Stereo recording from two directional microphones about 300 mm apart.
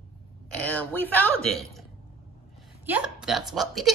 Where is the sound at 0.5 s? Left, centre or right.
Centre.